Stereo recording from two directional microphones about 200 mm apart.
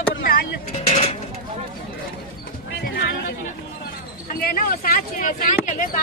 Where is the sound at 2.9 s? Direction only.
45° left (ahead or behind).